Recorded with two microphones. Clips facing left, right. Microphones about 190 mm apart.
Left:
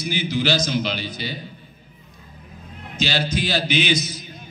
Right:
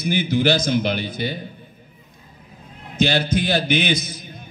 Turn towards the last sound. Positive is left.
turn(degrees=-55)  # may be behind; listen again after turning